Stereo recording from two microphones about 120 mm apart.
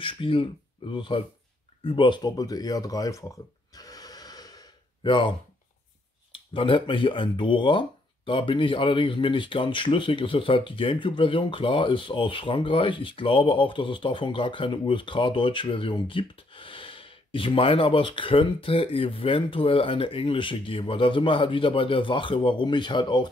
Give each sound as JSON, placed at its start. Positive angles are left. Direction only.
{"t": 0.0, "sound": "speech", "side_deg": 45}
{"t": 1.8, "sound": "a sound", "side_deg": 45}
{"t": 6.3, "sound": "speech", "side_deg": 45}